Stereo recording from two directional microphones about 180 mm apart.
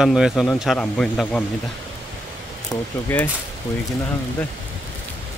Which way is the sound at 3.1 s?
10° left (ahead or behind).